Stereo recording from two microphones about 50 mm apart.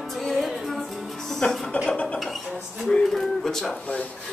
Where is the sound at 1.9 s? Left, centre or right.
Left.